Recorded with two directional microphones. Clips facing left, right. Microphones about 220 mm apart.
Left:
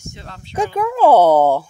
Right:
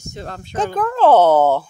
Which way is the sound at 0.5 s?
10° left (ahead or behind).